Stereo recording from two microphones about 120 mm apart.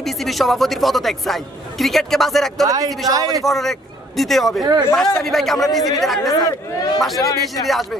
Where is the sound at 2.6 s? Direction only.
30° right (ahead or behind).